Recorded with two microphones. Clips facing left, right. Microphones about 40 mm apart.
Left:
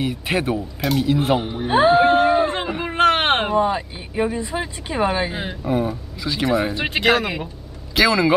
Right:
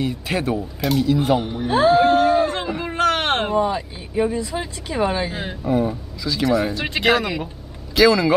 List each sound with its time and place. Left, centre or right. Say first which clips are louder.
0.3 s speech: left 2 dB; left
0.6 s speech: right 1 dB; centre
1.0 s a sound: right 1 dB; left
3.4 s speech: left 1 dB; centre
6.2 s speech: right 1 dB; left
7.0 s speech: even; centre
8.0 s speech: right 1 dB; left